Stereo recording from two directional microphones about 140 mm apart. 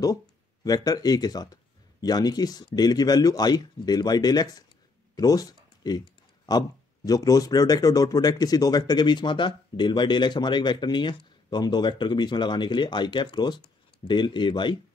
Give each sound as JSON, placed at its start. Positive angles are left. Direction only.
{"t": 0.7, "sound": "speech", "side_deg": 25}
{"t": 5.1, "sound": "a sound", "side_deg": 25}
{"t": 7.1, "sound": "speech", "side_deg": 25}